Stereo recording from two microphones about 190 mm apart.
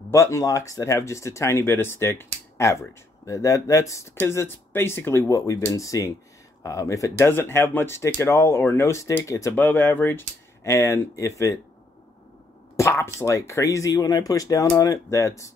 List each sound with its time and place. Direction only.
0.1 s speech: 15° left (ahead or behind)
12.7 s speech: 15° left (ahead or behind)